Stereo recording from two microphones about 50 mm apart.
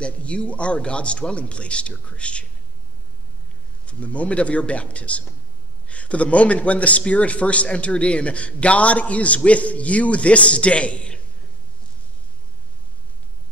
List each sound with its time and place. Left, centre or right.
0.0 s a man's voice: left
3.8 s a man's voice: left